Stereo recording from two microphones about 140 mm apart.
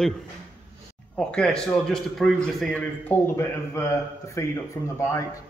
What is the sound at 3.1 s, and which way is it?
Speech, 20° left (ahead or behind).